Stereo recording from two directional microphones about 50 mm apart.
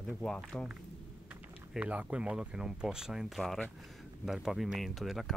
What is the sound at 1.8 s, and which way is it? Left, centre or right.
Speech, right.